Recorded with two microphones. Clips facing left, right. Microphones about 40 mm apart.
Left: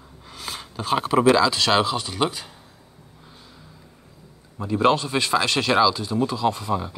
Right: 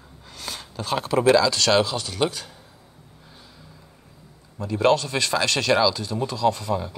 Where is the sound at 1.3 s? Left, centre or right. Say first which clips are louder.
Right 2 dB; centre.